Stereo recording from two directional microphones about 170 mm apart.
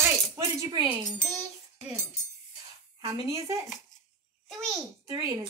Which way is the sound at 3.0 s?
20° right (ahead or behind).